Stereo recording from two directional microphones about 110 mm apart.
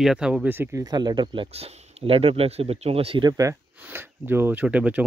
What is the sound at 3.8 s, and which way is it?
Speech, 20° right (ahead or behind).